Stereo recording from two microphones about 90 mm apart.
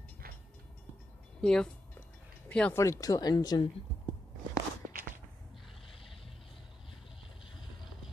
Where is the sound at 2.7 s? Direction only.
35° left (ahead or behind).